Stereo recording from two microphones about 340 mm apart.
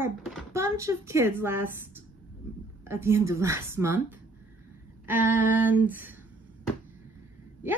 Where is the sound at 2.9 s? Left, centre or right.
Centre.